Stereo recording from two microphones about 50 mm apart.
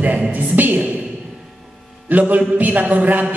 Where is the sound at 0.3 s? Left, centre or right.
Right.